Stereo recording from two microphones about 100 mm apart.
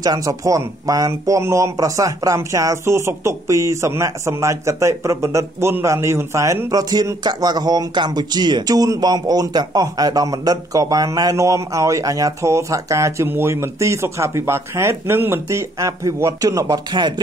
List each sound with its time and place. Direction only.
0.0 s speech: 40° right (ahead or behind)